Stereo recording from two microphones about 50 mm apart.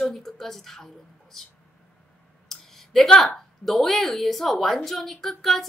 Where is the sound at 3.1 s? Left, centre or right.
Centre.